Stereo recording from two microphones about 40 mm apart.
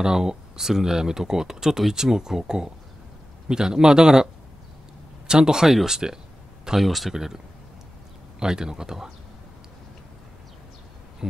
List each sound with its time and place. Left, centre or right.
0.0 s speech: centre
5.3 s speech: centre
6.8 s speech: centre
7.2 s speech: centre